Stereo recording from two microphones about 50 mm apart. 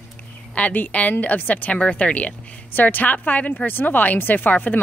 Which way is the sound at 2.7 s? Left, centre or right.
Left.